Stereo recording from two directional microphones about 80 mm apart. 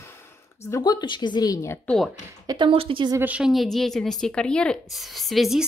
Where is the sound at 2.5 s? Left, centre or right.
Right.